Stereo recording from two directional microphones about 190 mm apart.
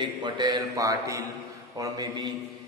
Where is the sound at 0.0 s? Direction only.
20° right (ahead or behind).